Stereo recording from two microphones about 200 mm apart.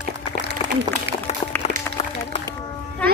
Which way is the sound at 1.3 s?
35° left (ahead or behind).